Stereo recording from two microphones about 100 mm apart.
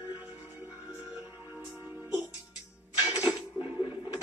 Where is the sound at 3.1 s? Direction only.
15° right (ahead or behind).